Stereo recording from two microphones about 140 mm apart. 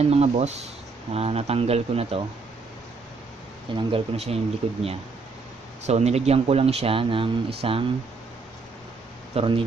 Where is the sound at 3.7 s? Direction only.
45° right (ahead or behind).